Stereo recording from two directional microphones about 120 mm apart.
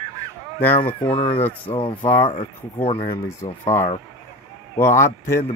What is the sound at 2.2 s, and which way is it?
Speech, 55° left (ahead or behind).